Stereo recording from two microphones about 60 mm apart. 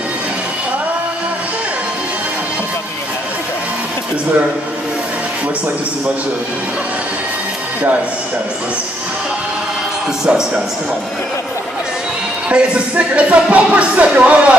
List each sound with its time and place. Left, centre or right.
10.2 s a man's voice: centre
12.4 s speech: right